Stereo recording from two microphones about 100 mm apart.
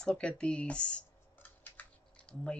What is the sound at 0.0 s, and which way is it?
Speech, 10° left (ahead or behind).